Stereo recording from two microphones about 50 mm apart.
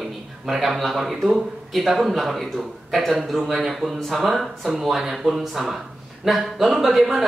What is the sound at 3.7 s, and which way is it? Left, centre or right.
Speech, centre.